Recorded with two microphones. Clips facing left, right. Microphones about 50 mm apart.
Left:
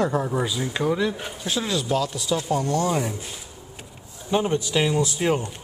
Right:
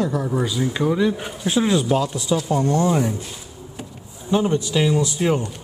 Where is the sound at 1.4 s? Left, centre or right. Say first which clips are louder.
Right 7 dB; right.